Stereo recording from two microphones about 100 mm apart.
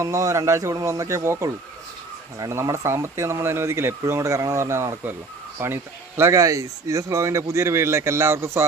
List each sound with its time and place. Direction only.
0.0 s speech: 30° right (ahead or behind)